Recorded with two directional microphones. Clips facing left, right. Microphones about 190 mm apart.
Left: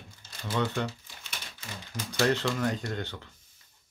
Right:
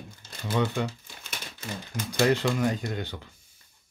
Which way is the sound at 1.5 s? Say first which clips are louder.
Right 5 dB; 50° right (ahead or behind).